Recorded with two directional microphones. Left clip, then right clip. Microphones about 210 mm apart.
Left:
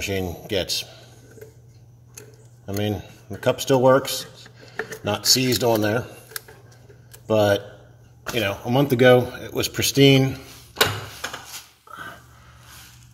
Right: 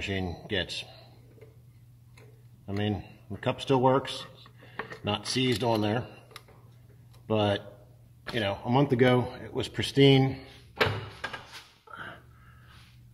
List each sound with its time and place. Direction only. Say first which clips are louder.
0.0 s speech: left 7 dB; centre (ahead or behind)
2.6 s speech: left 6 dB; centre (ahead or behind)
7.2 s speech: left 9 dB; centre (ahead or behind)